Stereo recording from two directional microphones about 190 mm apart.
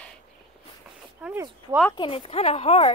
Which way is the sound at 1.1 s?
5° right (ahead or behind).